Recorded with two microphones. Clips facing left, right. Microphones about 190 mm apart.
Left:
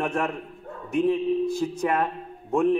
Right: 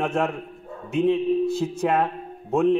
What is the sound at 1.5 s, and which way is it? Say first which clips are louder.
Speech: right 2 dB; 25° right (ahead or behind).